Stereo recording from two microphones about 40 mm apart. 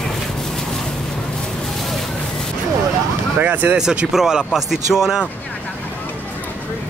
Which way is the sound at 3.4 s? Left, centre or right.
Right.